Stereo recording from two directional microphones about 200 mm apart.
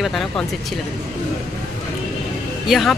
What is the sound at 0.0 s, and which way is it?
Speech, centre (ahead or behind).